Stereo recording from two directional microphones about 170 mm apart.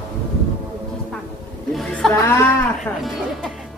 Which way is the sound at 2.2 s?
15° left (ahead or behind).